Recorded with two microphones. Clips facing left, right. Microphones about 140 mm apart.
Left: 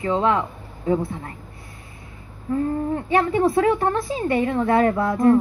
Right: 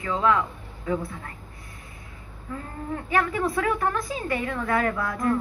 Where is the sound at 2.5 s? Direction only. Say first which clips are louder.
Left 11 dB; 30° left (ahead or behind).